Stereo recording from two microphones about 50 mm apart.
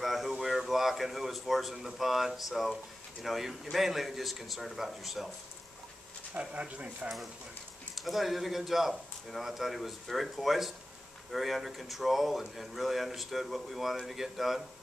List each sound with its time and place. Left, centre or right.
0.0 s a sound: centre
0.4 s speech: centre
6.3 s speech: right
7.9 s speech: centre